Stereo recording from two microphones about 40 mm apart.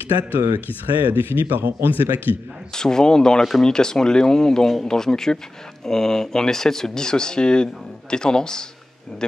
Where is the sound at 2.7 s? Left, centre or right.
Centre.